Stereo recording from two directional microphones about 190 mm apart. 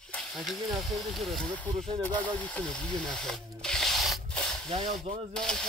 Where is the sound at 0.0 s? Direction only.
5° left (ahead or behind).